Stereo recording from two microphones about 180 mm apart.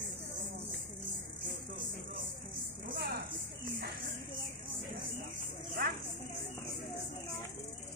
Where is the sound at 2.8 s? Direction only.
60° right (ahead or behind).